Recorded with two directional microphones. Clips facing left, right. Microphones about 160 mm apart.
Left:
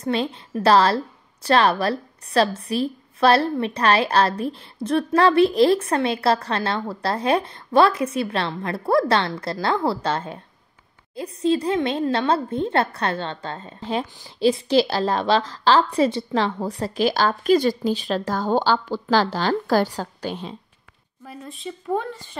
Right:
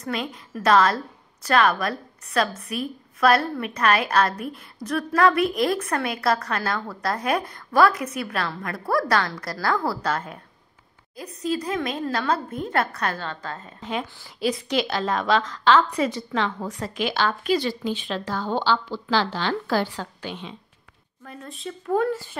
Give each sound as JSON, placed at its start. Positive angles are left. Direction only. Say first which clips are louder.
{"t": 0.0, "sound": "a woman's voice", "louder": "left 6 dB", "side_deg": 30}
{"t": 21.2, "sound": "speech", "louder": "left 1 dB", "side_deg": 5}